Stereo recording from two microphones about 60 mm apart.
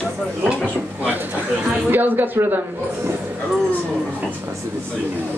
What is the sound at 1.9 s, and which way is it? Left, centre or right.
Speech, right.